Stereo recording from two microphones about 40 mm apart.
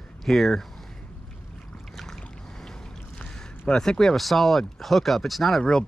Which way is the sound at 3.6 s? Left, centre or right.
Left.